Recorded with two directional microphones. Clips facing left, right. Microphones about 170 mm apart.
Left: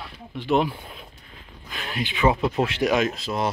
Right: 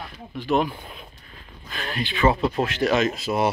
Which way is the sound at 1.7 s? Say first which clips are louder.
Right 1 dB; 15° left (ahead or behind).